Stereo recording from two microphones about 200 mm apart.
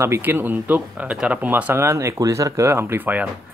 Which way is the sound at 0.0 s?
10° right (ahead or behind).